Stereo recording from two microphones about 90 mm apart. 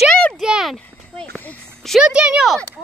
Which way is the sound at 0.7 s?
15° left (ahead or behind).